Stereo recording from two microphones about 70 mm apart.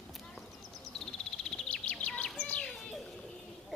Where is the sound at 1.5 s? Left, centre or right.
Centre.